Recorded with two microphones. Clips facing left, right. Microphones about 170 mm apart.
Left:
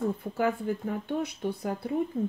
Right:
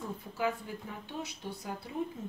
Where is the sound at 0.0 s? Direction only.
55° left (ahead or behind).